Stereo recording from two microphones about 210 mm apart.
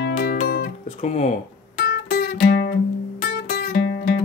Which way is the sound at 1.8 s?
50° left (ahead or behind).